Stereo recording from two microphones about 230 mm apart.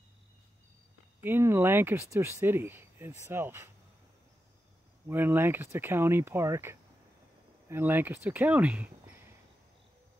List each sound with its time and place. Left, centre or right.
1.2 s speech: centre
5.0 s speech: centre